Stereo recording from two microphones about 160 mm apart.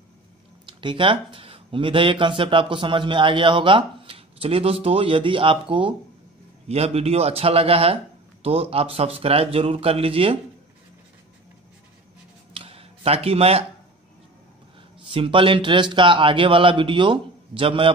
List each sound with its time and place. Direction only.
0.7 s speech: 30° right (ahead or behind)
12.5 s a sound: 35° right (ahead or behind)
15.0 s speech: 35° right (ahead or behind)